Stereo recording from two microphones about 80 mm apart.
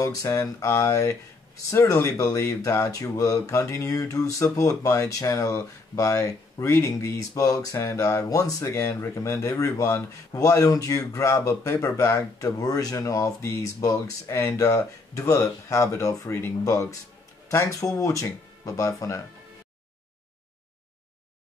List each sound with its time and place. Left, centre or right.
0.0 s speech: left
17.5 s speech: left